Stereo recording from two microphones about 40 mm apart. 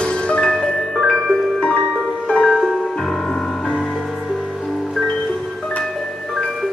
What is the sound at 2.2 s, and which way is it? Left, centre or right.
Music, centre.